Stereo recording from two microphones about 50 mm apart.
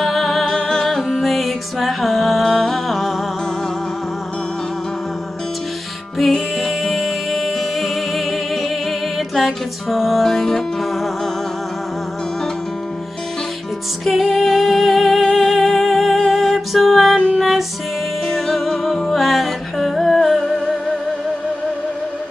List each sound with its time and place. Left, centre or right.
0.0 s music: centre
6.1 s music: centre
14.0 s music: centre